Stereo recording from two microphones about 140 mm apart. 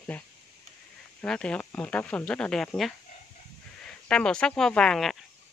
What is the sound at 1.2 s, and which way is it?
Speech, 5° left (ahead or behind).